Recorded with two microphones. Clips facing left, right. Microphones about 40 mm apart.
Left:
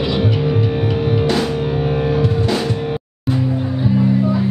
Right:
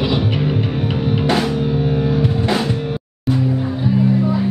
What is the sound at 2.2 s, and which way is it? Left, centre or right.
Music, centre.